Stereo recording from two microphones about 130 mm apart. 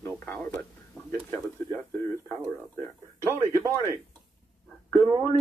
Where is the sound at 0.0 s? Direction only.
20° left (ahead or behind).